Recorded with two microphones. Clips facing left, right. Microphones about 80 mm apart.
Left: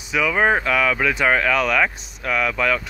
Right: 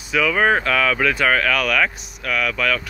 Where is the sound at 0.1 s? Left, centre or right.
Centre.